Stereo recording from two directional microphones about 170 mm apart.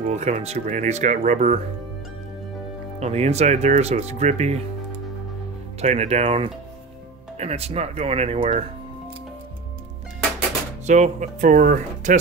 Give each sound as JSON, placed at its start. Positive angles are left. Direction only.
{"t": 0.0, "sound": "speech", "side_deg": -40}
{"t": 3.0, "sound": "speech", "side_deg": -40}
{"t": 5.8, "sound": "speech", "side_deg": -40}
{"t": 10.9, "sound": "speech", "side_deg": -45}